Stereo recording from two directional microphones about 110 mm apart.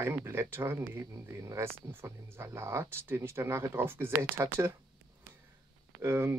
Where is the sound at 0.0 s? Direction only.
25° right (ahead or behind).